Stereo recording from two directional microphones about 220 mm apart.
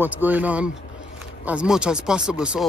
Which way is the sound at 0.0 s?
10° right (ahead or behind).